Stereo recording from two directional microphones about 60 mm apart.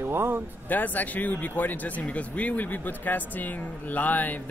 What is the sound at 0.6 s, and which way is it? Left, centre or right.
Speech, left.